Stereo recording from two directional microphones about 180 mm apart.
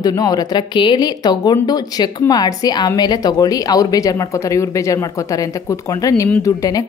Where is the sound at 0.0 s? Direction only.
20° left (ahead or behind).